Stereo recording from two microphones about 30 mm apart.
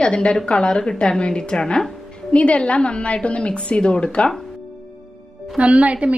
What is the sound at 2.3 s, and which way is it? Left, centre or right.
A woman's voice, left.